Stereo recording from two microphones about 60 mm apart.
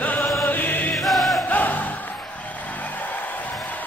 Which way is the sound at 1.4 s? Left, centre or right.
Left.